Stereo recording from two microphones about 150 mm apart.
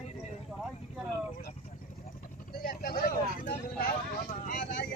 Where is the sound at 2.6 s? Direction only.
75° left (ahead or behind).